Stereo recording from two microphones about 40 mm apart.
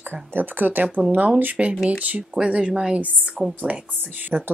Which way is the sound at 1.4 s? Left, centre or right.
Right.